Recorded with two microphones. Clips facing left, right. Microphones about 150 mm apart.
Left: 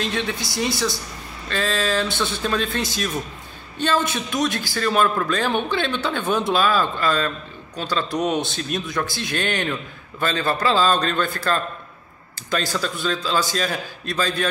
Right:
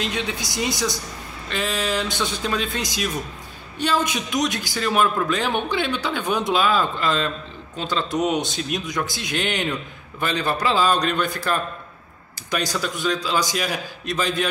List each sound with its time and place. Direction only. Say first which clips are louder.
0.0 s speech: left 1 dB; 15° right (ahead or behind)